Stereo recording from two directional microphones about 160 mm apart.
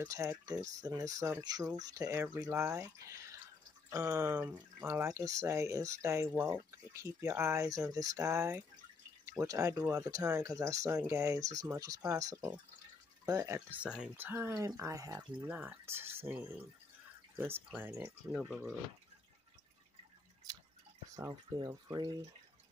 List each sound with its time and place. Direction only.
0.0 s speech: 15° right (ahead or behind)
15.5 s speech: 10° right (ahead or behind)
21.1 s speech: 20° right (ahead or behind)